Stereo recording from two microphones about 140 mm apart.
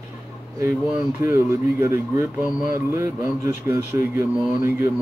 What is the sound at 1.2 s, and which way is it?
Speech, 20° right (ahead or behind).